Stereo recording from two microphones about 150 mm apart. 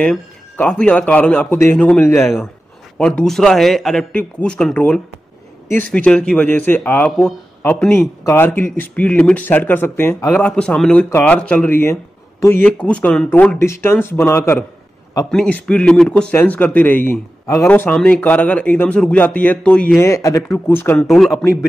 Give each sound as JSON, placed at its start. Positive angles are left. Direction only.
{"t": 0.0, "sound": "a man's voice", "side_deg": 5}
{"t": 15.3, "sound": "a man's voice", "side_deg": 5}
{"t": 20.0, "sound": "a man's voice", "side_deg": 20}